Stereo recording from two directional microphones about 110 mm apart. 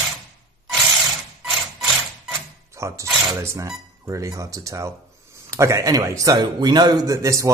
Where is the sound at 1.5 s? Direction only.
Centre (ahead or behind).